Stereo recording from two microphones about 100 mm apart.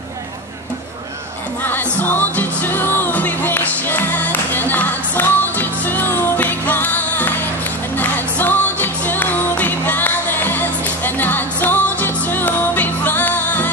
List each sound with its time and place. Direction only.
1.7 s music: 20° left (ahead or behind)